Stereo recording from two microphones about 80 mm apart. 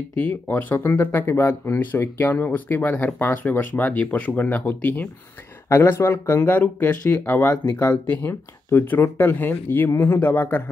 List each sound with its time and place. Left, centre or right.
0.2 s speech: left
5.7 s speech: left
6.5 s speech: left